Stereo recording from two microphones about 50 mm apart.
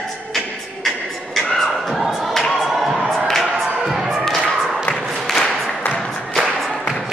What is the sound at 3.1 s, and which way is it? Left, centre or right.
Music, centre.